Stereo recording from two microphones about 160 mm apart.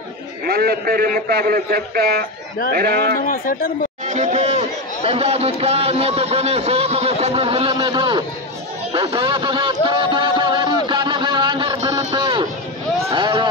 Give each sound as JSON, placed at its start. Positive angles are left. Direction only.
{"t": 0.5, "sound": "a man's voice", "side_deg": -70}
{"t": 3.2, "sound": "speech", "side_deg": 60}
{"t": 4.1, "sound": "a man's voice", "side_deg": -45}
{"t": 9.0, "sound": "a sound", "side_deg": -30}